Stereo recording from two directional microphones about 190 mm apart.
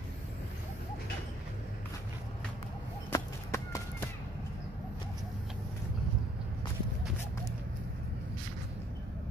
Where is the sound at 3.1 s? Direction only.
15° left (ahead or behind).